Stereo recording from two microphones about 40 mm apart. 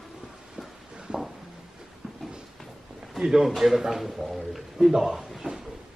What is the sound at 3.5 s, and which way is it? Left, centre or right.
A man's voice, centre.